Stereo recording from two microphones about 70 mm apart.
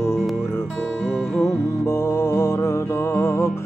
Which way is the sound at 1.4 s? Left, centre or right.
Left.